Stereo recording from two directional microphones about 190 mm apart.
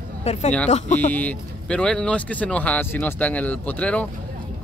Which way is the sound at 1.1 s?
5° left (ahead or behind).